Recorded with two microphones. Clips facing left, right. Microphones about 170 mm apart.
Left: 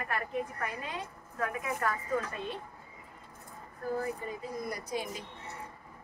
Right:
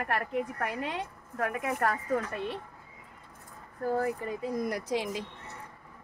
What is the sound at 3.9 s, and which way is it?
Speech, 70° right (ahead or behind).